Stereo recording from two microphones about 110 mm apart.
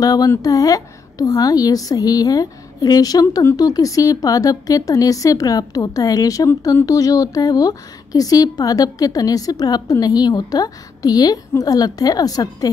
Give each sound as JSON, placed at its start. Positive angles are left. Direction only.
{"t": 0.0, "sound": "a woman's voice", "side_deg": 35}